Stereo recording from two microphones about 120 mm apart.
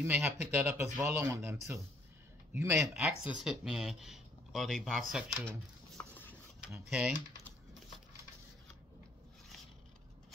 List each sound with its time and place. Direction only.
0.0 s speech: 15° right (ahead or behind)
3.0 s speech: 5° right (ahead or behind)
6.0 s a sound: 20° left (ahead or behind)
6.9 s speech: 10° right (ahead or behind)